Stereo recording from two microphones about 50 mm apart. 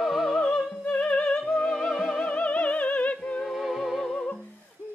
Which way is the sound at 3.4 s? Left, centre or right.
Centre.